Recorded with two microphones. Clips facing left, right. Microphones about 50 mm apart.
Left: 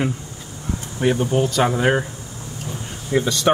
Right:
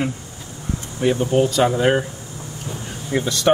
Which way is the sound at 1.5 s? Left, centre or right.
Centre.